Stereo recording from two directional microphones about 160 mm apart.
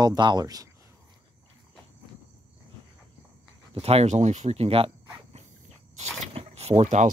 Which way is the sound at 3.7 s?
40° right (ahead or behind).